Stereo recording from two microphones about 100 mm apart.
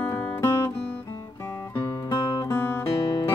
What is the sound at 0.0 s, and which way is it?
Music, 20° left (ahead or behind).